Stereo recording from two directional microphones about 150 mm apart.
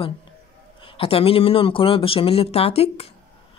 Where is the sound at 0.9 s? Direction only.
40° left (ahead or behind).